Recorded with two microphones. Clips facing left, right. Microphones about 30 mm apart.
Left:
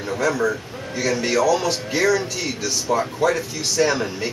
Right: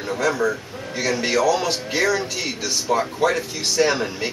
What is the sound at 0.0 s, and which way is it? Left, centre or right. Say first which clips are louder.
A man's voice: even; centre.